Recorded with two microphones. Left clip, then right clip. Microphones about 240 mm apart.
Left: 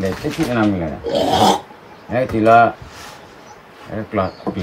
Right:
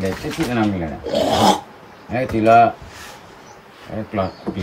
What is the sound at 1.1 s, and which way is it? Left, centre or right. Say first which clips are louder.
A man's voice: left 1 dB; centre.